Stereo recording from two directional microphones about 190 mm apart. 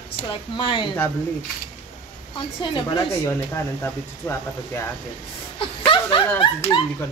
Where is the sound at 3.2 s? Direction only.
15° left (ahead or behind).